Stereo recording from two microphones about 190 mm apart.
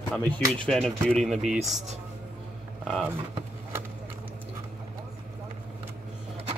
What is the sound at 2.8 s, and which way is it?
Speech, centre (ahead or behind).